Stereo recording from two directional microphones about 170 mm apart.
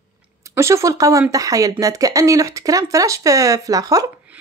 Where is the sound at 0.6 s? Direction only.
15° right (ahead or behind).